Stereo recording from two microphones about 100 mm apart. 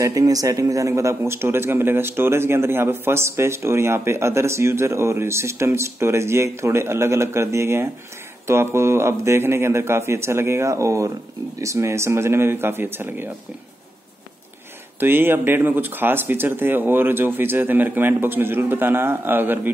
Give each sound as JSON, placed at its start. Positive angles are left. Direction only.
{"t": 0.0, "sound": "a man's voice", "side_deg": -35}
{"t": 15.0, "sound": "a man's voice", "side_deg": -20}